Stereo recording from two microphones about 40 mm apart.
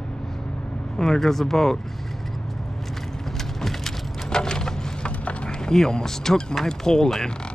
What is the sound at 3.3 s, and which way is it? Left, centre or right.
Vehicle, centre.